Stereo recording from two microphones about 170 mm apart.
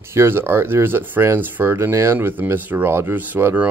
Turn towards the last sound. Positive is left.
turn(degrees=-10)  # may be behind; listen again after turning